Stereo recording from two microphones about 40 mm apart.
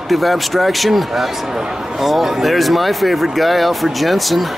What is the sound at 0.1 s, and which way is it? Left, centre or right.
Speech, centre.